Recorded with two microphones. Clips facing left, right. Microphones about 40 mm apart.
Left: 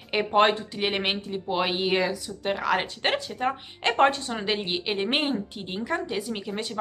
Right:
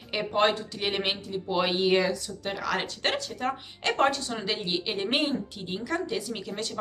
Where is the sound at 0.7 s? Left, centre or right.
Centre.